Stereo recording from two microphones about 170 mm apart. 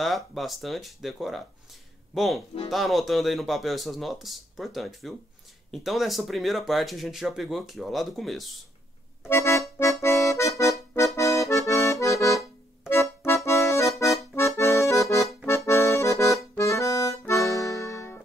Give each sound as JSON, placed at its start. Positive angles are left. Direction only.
{"t": 0.0, "sound": "speech", "side_deg": 0}
{"t": 9.3, "sound": "accordion", "side_deg": 20}